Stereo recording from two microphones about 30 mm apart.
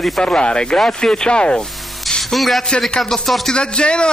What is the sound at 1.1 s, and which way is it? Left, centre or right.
Speech, left.